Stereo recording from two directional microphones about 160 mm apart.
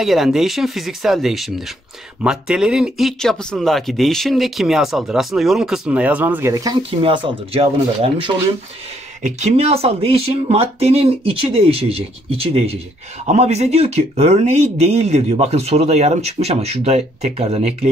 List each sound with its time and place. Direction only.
0.0 s speech: centre (ahead or behind); by 6.8 s 20° right (ahead or behind)
6.9 s speech: 35° right (ahead or behind)
9.2 s speech: 45° right (ahead or behind)